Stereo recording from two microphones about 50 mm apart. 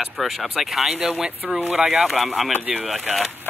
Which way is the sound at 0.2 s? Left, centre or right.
Centre.